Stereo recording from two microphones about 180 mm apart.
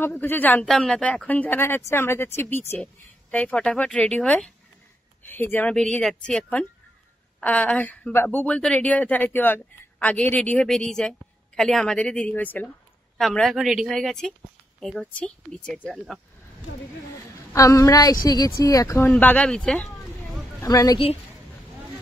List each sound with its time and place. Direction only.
0.0 s speech: 10° left (ahead or behind)
17.5 s a woman's voice: 15° left (ahead or behind)
20.6 s a woman's voice: 20° left (ahead or behind)